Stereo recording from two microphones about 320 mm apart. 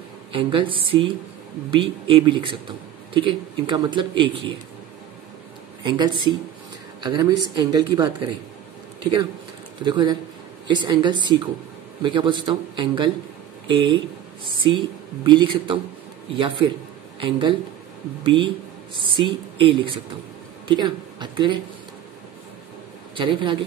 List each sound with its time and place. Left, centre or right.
0.3 s a man's voice: centre
5.9 s a man's voice: centre
9.8 s a man's voice: centre
23.1 s a man's voice: centre